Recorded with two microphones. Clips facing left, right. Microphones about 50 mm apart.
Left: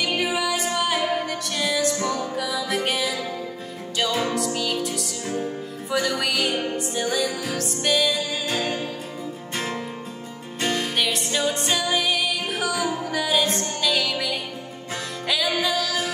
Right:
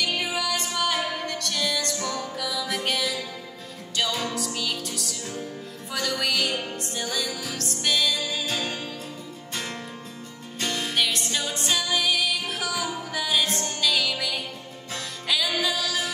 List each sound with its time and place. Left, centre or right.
0.2 s music: centre
2.0 s music: left
2.3 s music: centre
4.8 s music: centre
6.5 s music: left
6.8 s music: centre
10.6 s music: centre